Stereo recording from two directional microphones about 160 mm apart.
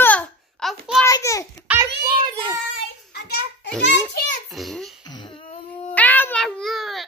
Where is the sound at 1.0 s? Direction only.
20° left (ahead or behind).